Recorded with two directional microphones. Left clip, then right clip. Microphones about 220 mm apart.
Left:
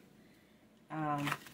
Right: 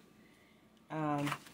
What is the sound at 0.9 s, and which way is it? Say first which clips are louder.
Speech: even; 40° right (ahead or behind).